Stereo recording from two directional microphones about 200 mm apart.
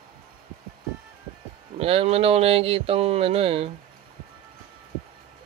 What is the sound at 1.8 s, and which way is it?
Speech, 30° right (ahead or behind).